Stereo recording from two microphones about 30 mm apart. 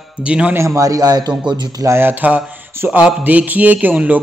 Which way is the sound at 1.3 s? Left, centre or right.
Right.